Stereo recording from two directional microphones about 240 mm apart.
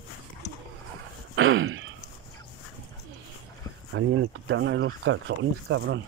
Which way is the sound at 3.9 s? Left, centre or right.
Right.